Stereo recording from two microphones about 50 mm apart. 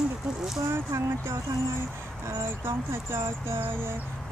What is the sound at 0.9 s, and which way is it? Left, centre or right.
Speech, right.